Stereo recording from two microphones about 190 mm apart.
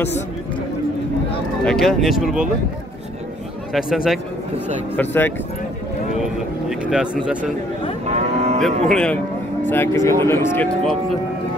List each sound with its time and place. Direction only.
1.6 s speech: 5° left (ahead or behind)
3.7 s speech: centre (ahead or behind)
4.9 s speech: 10° left (ahead or behind)
6.7 s speech: 5° right (ahead or behind)
8.1 s cattle: 35° right (ahead or behind)
8.8 s speech: 5° left (ahead or behind)